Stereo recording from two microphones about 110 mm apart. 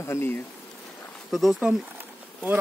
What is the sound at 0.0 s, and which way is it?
Speech, 25° left (ahead or behind).